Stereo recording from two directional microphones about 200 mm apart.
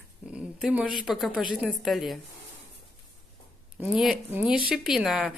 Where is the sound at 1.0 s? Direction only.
Centre (ahead or behind).